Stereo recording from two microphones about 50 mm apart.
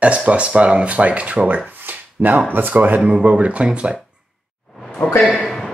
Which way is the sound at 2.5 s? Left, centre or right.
Right.